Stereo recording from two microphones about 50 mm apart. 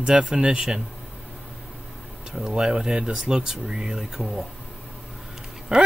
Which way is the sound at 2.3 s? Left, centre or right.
Centre.